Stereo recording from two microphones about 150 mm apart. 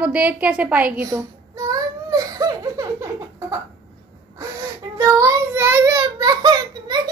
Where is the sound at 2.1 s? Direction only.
25° right (ahead or behind).